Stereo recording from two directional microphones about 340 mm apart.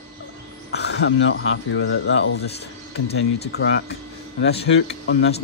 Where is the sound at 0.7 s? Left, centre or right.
Left.